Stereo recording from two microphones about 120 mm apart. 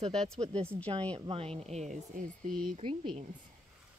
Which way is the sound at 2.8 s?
55° right (ahead or behind).